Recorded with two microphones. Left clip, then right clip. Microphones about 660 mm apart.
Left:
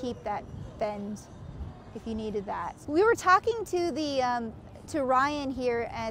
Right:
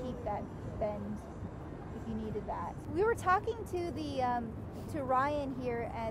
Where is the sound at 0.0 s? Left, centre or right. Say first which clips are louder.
Left 5 dB; left.